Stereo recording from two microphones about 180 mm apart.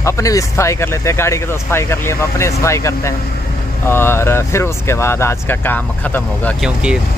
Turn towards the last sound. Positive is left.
turn(degrees=5)  # may be behind; listen again after turning